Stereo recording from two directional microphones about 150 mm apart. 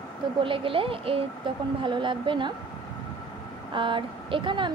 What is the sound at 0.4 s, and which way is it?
Speech, 35° right (ahead or behind).